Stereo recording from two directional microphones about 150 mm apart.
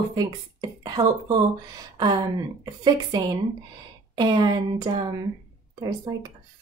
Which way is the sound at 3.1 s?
25° right (ahead or behind).